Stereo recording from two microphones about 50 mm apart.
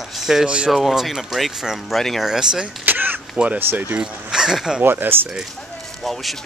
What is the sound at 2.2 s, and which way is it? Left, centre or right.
Speech, centre.